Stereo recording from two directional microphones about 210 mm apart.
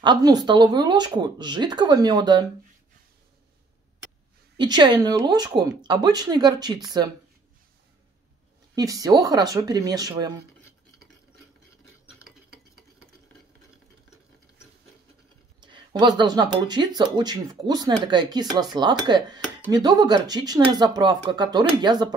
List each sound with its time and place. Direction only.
0.0 s speech: 20° right (ahead or behind)
4.6 s speech: 20° right (ahead or behind)
8.7 s speech: 15° right (ahead or behind)
15.6 s speech: 20° right (ahead or behind)